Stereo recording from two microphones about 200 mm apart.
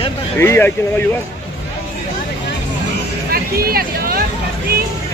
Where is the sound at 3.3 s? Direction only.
50° right (ahead or behind).